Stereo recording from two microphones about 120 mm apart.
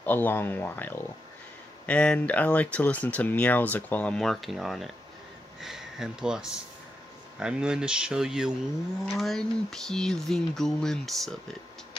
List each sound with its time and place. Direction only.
0.0 s speech: 15° left (ahead or behind)